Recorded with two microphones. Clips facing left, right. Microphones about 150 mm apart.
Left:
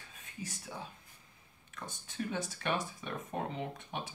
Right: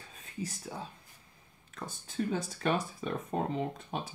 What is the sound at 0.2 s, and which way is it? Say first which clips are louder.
Speech: right 6 dB; 35° right (ahead or behind).